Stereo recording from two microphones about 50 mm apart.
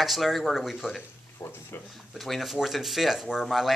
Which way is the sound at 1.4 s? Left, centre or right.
Left.